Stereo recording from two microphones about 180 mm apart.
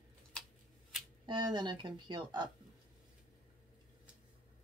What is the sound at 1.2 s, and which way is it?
A woman's voice, 25° right (ahead or behind).